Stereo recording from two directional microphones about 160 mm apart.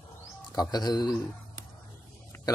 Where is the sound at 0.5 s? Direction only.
25° left (ahead or behind).